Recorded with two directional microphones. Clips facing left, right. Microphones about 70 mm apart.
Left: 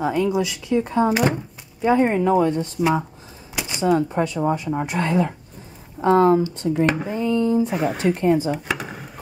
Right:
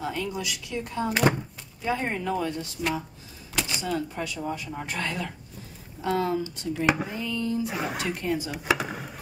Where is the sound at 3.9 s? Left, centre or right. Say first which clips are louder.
Left 10 dB; left.